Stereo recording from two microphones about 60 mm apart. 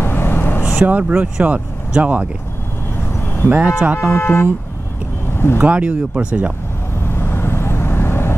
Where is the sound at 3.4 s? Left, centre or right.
Right.